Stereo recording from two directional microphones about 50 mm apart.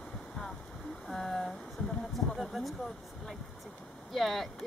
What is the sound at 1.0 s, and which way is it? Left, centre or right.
Speech, centre.